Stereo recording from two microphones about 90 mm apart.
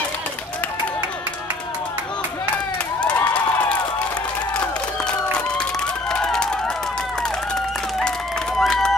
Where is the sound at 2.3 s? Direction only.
15° left (ahead or behind).